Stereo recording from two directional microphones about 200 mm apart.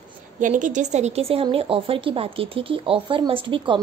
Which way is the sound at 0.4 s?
40° right (ahead or behind).